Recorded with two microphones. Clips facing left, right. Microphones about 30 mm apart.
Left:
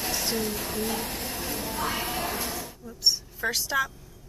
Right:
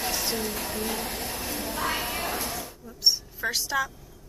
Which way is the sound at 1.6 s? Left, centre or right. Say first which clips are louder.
Right 1 dB; right.